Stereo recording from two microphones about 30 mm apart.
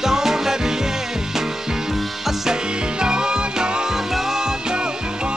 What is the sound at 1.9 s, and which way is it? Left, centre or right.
Music, centre.